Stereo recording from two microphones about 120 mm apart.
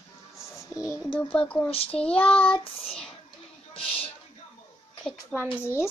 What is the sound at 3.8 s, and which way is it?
Speech, 50° left (ahead or behind).